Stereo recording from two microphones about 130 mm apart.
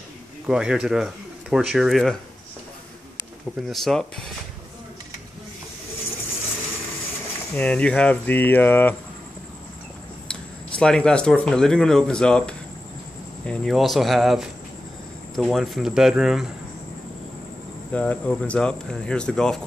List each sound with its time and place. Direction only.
0.5 s speech: 5° right (ahead or behind)
3.6 s speech: centre (ahead or behind)
7.5 s speech: 10° left (ahead or behind)
10.3 s speech: 5° left (ahead or behind)
17.9 s speech: 10° left (ahead or behind)